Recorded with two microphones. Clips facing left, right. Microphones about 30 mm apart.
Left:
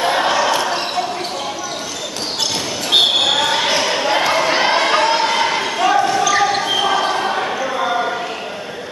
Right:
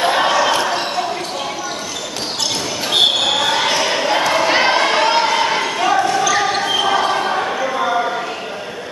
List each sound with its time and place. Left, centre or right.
0.0 s basketball bounce: centre
2.9 s basketball bounce: left
3.3 s basketball bounce: centre
3.8 s a sound: centre
4.5 s crowd: centre
5.8 s basketball bounce: centre